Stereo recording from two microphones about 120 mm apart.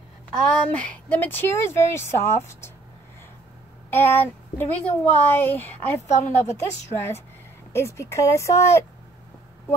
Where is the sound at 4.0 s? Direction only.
15° left (ahead or behind).